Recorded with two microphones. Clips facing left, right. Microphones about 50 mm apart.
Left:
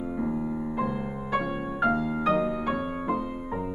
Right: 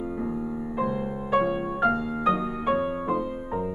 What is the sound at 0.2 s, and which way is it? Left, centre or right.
Music, centre.